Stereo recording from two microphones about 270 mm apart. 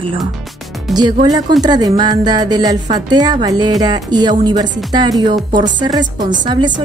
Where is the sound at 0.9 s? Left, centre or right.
Centre.